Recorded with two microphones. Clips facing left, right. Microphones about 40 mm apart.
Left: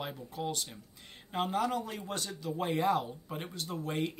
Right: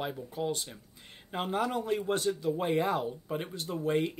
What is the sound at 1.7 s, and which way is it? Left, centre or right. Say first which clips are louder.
Speech: right 6 dB; right.